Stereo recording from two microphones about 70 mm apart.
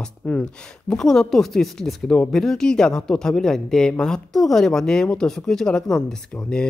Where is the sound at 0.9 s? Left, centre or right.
Centre.